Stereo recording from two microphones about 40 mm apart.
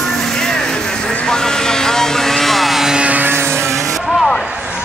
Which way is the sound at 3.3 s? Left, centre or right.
Right.